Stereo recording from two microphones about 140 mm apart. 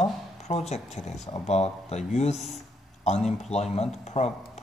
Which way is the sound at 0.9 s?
50° left (ahead or behind).